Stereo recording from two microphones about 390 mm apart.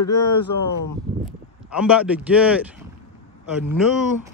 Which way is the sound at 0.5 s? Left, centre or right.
Left.